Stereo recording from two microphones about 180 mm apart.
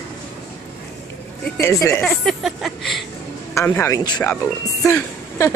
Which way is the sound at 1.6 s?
15° left (ahead or behind).